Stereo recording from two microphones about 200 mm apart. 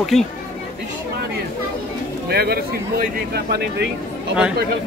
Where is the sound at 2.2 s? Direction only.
50° right (ahead or behind).